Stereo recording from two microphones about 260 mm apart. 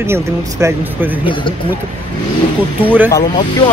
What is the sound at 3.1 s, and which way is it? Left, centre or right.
Speech, centre.